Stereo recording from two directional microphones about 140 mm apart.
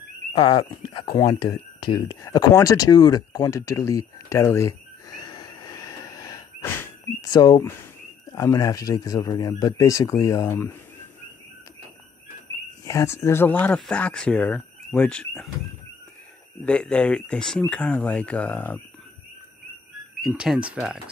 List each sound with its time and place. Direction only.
1.1 s speech: 25° left (ahead or behind)
12.8 s speech: 20° left (ahead or behind); by 15.5 s 5° left (ahead or behind)
16.6 s speech: 5° left (ahead or behind)
20.2 s speech: centre (ahead or behind)